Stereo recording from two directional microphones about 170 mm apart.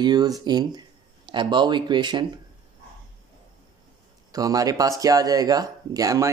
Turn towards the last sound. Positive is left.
turn(degrees=-20)  # may be behind; listen again after turning